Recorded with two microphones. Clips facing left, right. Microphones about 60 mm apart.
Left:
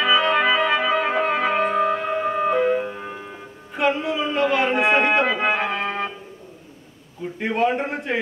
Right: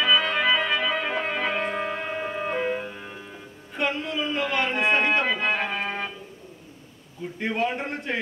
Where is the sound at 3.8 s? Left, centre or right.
Centre.